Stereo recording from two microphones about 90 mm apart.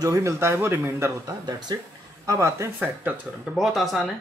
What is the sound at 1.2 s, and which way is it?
Speech, 50° right (ahead or behind).